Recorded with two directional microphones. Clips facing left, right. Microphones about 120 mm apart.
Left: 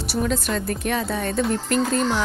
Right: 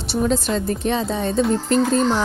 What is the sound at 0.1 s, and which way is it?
Speech, 30° right (ahead or behind).